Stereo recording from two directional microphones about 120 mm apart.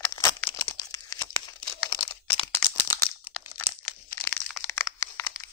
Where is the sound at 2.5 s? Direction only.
20° left (ahead or behind).